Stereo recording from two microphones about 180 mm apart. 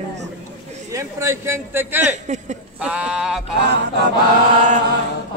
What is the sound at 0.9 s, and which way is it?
A man's voice, 15° right (ahead or behind).